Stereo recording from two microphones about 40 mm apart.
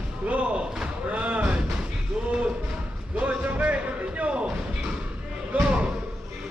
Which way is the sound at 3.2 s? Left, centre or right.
Right.